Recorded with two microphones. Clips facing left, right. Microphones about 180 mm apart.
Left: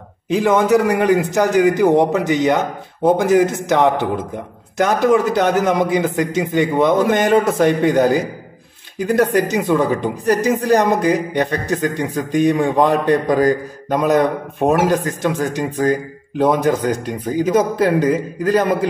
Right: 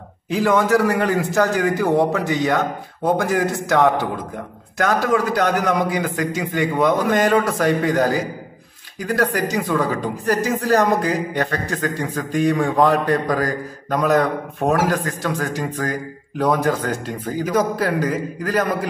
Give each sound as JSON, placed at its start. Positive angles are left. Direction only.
{"t": 0.3, "sound": "speech", "side_deg": 20}